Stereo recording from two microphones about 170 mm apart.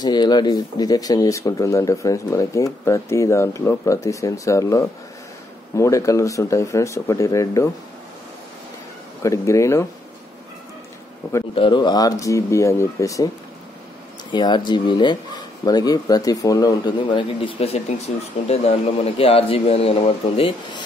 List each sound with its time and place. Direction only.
0.0 s speech: 25° left (ahead or behind)
9.2 s speech: 20° left (ahead or behind)
11.5 s speech: 30° left (ahead or behind)
14.3 s speech: 25° left (ahead or behind)